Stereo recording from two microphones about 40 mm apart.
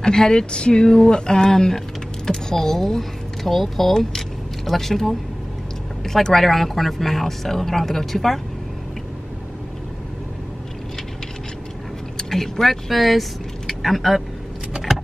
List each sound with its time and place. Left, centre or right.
0.0 s speech: centre
12.2 s speech: centre
14.9 s vehicle: centre